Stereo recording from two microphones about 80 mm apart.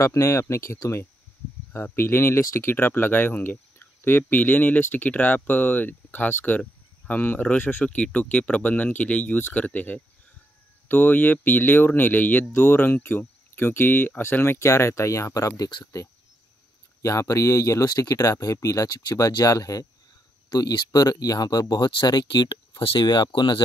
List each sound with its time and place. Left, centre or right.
0.0 s speech: left
17.0 s speech: left
17.8 s speech: left
19.1 s speech: left
20.4 s speech: left